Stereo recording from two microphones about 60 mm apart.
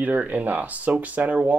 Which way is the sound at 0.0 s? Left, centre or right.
Right.